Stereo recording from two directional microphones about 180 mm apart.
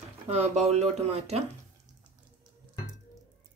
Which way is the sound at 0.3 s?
35° right (ahead or behind).